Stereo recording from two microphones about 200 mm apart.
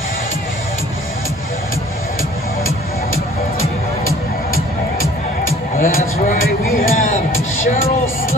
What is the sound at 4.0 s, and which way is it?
Music, 90° left.